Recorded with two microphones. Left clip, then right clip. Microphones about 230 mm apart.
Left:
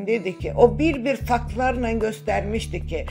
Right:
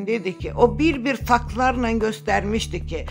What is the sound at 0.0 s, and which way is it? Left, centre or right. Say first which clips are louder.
Speech: left 1 dB; centre.